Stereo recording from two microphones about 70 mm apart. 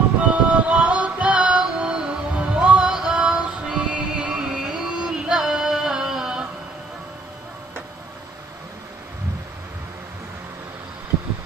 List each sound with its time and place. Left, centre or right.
0.2 s music: centre